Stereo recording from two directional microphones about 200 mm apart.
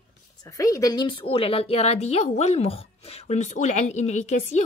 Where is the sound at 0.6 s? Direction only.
15° left (ahead or behind).